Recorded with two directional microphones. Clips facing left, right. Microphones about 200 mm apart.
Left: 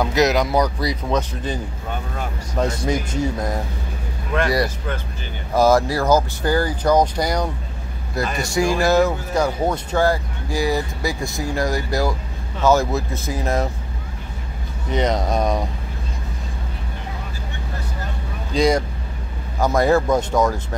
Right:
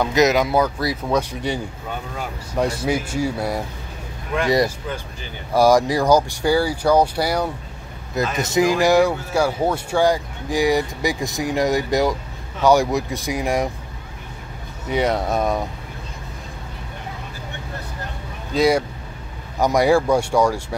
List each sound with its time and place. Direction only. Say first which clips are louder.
0.0 s speech: right 1 dB; centre (ahead or behind)
5.5 s speech: right 1 dB; 15° right (ahead or behind)
8.4 s speech: right 2 dB; 20° right (ahead or behind)
14.9 s speech: even; 10° right (ahead or behind)
18.5 s speech: right 1 dB; 5° right (ahead or behind)